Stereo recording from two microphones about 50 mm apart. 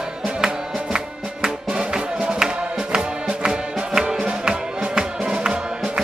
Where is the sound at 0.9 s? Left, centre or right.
Centre.